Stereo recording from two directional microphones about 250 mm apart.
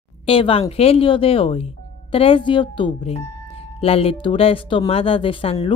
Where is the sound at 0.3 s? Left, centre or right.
Left.